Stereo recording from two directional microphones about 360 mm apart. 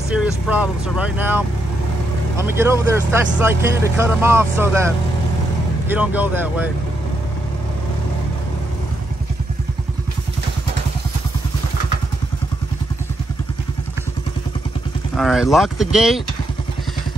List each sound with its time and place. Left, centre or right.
0.1 s speech: centre
2.4 s speech: centre
15.1 s speech: centre